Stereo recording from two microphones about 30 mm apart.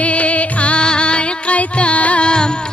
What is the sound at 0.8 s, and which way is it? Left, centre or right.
Music, left.